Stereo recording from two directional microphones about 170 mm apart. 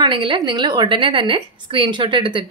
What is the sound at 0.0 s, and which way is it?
A woman's voice, 30° right (ahead or behind).